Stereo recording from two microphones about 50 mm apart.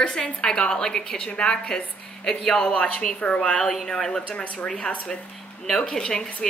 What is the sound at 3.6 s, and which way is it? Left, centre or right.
A woman's voice, centre.